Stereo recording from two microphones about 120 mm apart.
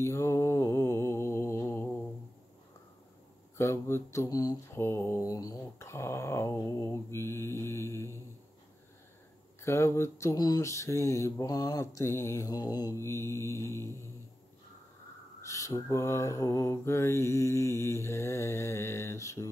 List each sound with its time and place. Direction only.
0.0 s mantra: 25° left (ahead or behind)
3.5 s mantra: 20° left (ahead or behind)
9.6 s mantra: 20° left (ahead or behind)
13.0 s mantra: 20° left (ahead or behind)
15.4 s mantra: 25° left (ahead or behind)